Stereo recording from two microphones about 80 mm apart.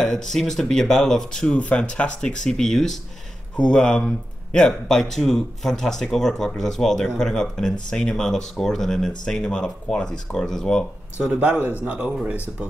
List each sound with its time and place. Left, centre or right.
0.0 s a man's voice: centre
11.1 s speech: centre